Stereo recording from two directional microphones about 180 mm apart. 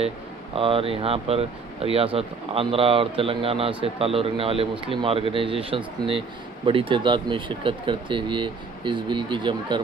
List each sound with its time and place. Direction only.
0.6 s speech: 30° right (ahead or behind)